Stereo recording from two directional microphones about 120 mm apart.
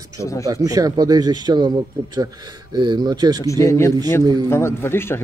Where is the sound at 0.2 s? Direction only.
25° left (ahead or behind).